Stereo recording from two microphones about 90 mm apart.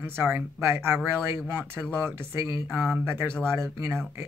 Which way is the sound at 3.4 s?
30° right (ahead or behind).